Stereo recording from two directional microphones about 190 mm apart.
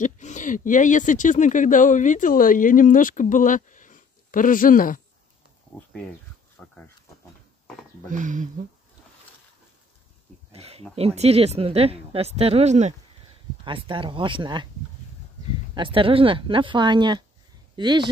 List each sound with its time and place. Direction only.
0.0 s speech: 40° left (ahead or behind)
5.8 s speech: 5° left (ahead or behind)
6.6 s pig: 5° left (ahead or behind)
8.1 s speech: 40° right (ahead or behind)
10.5 s speech: 35° right (ahead or behind)
13.7 s speech: 25° right (ahead or behind)
15.7 s speech: 25° right (ahead or behind)